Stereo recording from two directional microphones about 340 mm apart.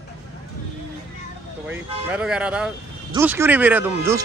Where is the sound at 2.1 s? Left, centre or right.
Centre.